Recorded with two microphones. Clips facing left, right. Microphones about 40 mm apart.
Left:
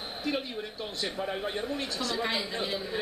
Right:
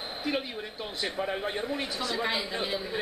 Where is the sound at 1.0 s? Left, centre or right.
Centre.